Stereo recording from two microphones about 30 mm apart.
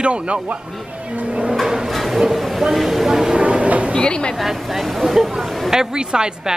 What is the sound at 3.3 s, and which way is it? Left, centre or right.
Train, right.